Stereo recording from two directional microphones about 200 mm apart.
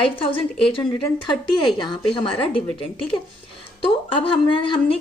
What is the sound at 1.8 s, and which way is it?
Speech, 25° left (ahead or behind).